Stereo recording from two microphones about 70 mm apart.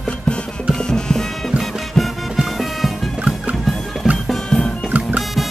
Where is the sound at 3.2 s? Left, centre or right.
Centre.